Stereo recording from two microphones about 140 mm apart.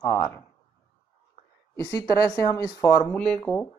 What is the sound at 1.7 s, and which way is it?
Speech, 20° left (ahead or behind).